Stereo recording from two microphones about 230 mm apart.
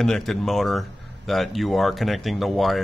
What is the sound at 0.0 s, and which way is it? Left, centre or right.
Speech, centre.